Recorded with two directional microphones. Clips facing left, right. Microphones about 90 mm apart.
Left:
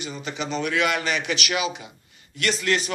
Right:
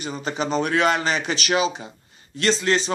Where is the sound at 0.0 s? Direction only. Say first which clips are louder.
Right 4 dB; 40° right (ahead or behind).